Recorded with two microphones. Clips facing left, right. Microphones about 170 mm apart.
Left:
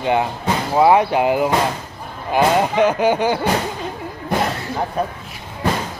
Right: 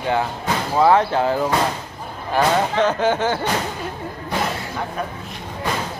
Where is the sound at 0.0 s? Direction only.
20° left (ahead or behind).